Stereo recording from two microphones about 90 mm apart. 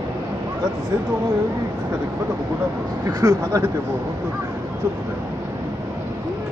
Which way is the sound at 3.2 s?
40° right (ahead or behind).